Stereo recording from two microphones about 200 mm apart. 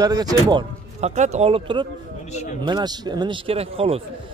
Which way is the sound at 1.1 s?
35° right (ahead or behind).